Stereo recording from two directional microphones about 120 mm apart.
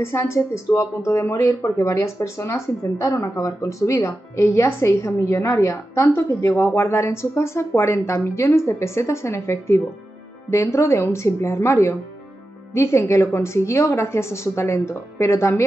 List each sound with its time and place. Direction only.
0.0 s speech: 20° left (ahead or behind)